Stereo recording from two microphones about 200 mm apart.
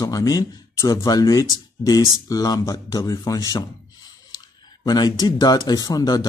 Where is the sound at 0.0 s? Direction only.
20° left (ahead or behind).